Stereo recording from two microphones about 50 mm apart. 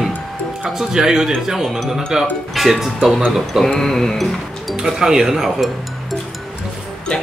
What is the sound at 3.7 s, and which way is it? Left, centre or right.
Music, centre.